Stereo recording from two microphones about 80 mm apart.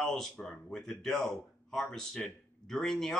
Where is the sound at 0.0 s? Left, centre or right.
Centre.